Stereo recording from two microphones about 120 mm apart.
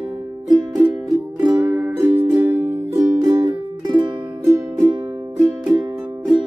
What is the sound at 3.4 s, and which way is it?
Music, 40° right (ahead or behind).